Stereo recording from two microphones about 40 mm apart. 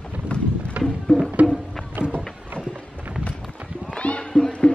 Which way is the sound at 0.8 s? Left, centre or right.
Right.